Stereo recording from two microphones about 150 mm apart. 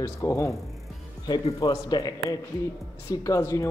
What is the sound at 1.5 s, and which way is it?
Speech, 25° left (ahead or behind).